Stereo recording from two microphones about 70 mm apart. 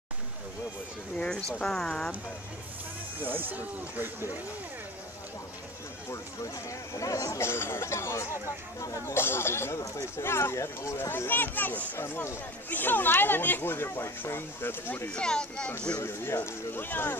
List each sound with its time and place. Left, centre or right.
1.1 s a sound: centre
1.6 s speech: centre
3.2 s speech: right
7.0 s speech: left
7.4 s speech: left
9.1 s speech: left
11.1 s a child's voice: left
15.0 s speech: centre
16.0 s speech: left